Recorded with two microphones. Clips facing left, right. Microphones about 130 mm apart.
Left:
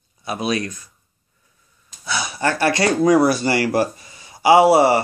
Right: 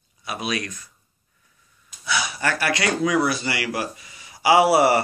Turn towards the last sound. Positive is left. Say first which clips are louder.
# left 4 dB
turn(degrees=25)  # may be behind; listen again after turning